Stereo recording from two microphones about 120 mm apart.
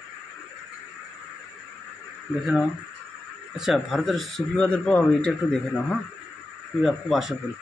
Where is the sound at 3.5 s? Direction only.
Centre (ahead or behind).